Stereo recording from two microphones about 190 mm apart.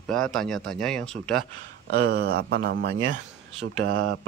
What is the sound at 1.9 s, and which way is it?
A man's voice, 55° right (ahead or behind).